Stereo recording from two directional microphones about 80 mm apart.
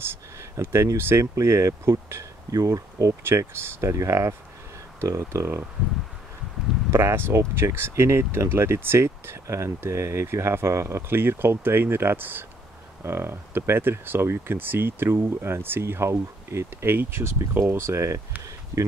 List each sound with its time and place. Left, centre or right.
0.0 s a sound: right
0.9 s speech: right
1.2 s speech: right
6.9 s speech: right